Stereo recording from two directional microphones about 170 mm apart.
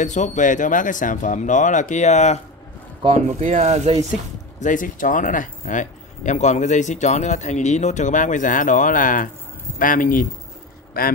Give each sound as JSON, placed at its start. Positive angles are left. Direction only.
{"t": 0.0, "sound": "speech", "side_deg": 45}
{"t": 3.3, "sound": "speech", "side_deg": -45}
{"t": 4.6, "sound": "a man's voice", "side_deg": 50}